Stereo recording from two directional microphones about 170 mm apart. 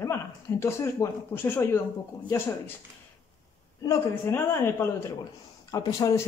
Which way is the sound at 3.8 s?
15° left (ahead or behind).